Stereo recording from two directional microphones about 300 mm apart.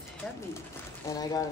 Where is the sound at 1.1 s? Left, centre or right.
Centre.